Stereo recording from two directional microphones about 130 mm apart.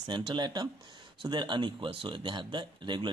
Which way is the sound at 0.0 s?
35° right (ahead or behind).